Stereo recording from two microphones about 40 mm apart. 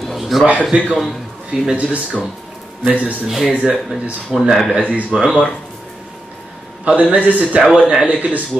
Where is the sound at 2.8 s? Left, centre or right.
Right.